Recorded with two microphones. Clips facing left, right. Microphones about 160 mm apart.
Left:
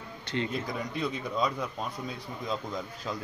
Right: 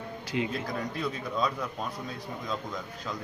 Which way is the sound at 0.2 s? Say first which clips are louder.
Right 1 dB; 5° right (ahead or behind).